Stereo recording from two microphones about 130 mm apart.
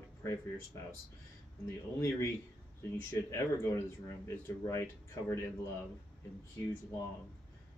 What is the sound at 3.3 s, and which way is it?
Speech, 25° left (ahead or behind).